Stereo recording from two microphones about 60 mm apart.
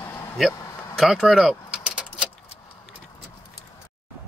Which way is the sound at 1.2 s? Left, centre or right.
Centre.